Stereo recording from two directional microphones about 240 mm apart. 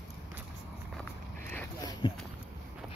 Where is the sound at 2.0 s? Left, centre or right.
Left.